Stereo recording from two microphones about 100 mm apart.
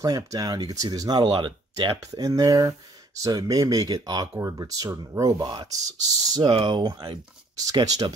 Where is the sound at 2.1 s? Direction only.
35° right (ahead or behind).